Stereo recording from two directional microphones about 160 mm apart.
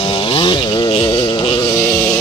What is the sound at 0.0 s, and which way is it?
Chainsaw, 35° left (ahead or behind).